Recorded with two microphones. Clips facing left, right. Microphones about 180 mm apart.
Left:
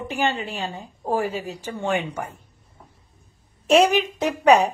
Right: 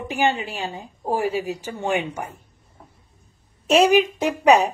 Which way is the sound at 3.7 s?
5° right (ahead or behind).